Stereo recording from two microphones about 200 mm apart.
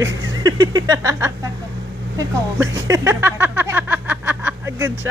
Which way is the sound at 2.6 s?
15° right (ahead or behind).